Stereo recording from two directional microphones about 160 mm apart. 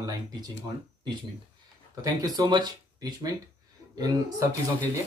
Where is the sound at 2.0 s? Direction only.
25° right (ahead or behind).